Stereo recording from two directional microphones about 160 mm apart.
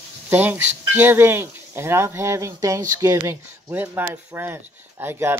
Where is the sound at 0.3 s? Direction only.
10° right (ahead or behind).